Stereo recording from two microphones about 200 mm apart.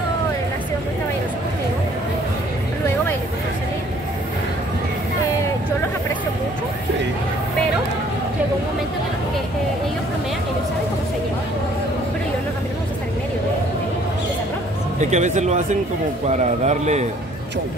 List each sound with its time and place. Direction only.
15.0 s a man's voice: 35° right (ahead or behind)